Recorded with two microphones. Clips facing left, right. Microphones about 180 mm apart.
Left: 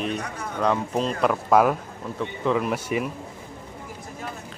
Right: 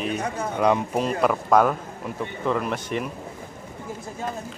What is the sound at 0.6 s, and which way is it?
A man's voice, 10° right (ahead or behind).